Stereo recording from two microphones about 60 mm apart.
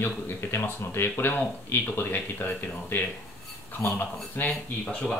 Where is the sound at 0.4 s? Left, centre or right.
Left.